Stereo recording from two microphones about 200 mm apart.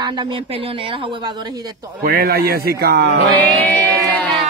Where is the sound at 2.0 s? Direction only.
50° right (ahead or behind).